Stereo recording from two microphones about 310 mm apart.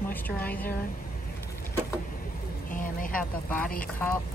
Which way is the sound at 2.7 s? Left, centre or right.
Left.